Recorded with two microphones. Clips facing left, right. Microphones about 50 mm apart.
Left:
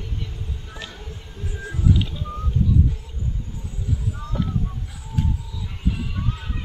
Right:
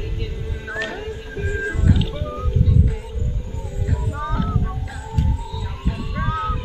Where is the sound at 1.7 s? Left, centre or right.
Right.